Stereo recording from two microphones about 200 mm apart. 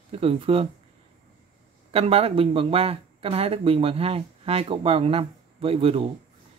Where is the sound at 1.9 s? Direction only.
30° right (ahead or behind).